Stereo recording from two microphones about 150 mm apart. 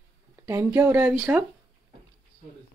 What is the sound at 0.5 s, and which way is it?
Speech, 20° right (ahead or behind).